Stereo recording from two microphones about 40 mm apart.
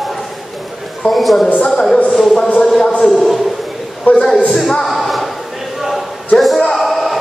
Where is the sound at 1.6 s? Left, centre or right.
Centre.